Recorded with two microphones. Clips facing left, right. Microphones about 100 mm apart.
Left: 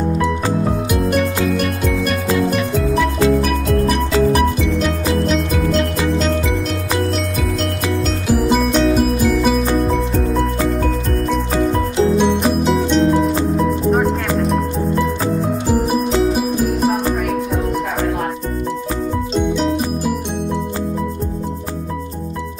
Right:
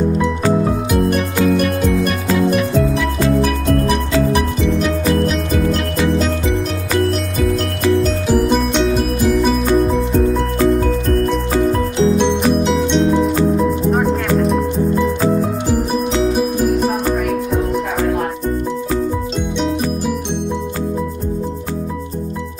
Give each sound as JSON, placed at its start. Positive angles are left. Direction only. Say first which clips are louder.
{"t": 0.9, "sound": "music", "louder": "right 1 dB", "side_deg": 0}
{"t": 8.3, "sound": "music", "louder": "left 2 dB", "side_deg": 0}
{"t": 16.3, "sound": "music", "louder": "right 1 dB", "side_deg": 0}